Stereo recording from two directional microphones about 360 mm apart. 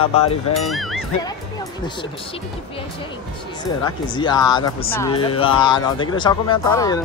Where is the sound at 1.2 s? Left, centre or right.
Centre.